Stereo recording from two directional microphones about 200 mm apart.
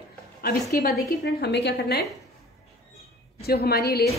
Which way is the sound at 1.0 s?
55° left (ahead or behind).